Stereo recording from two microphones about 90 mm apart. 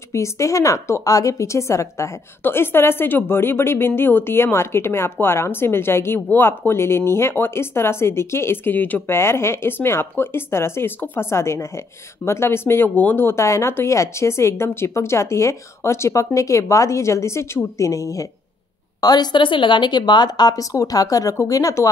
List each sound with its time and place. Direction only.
0.1 s speech: 35° left (ahead or behind)
18.9 s a woman's voice: 50° left (ahead or behind)